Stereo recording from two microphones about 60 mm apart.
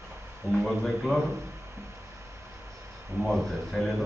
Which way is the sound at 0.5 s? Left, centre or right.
Centre.